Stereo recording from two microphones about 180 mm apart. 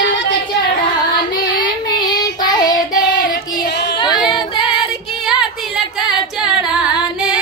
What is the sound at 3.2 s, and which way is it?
Female singing, 70° left (ahead or behind).